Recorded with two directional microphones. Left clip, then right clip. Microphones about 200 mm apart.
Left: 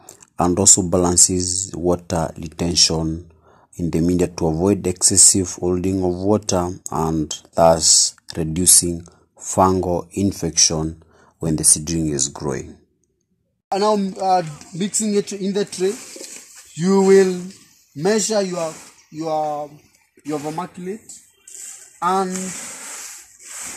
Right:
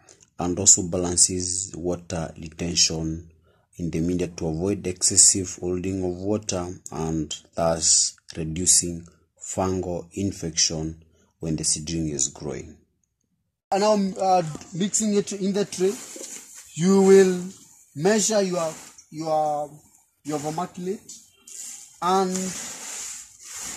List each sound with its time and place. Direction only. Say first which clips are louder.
0.5 s speech: left 4 dB; 25° left (ahead or behind)
13.7 s speech: left 2 dB; 10° right (ahead or behind)
22.0 s speech: left 3 dB; centre (ahead or behind)
23.4 s a sound: left 3 dB; centre (ahead or behind)